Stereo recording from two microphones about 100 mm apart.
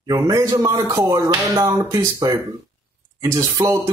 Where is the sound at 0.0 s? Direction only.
40° right (ahead or behind).